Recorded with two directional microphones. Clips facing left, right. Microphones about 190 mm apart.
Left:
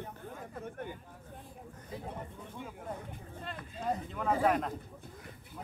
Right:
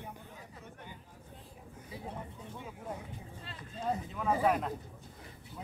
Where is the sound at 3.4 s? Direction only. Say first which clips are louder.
Left 5 dB; 55° left (ahead or behind).